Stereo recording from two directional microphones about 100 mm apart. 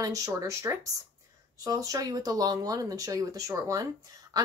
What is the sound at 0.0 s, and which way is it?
A woman's voice, 35° right (ahead or behind).